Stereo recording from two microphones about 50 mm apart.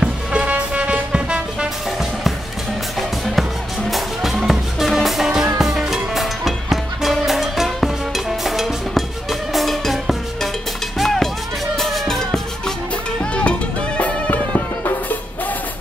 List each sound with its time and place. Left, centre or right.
0.0 s music: right
3.0 s music: centre
13.2 s music: left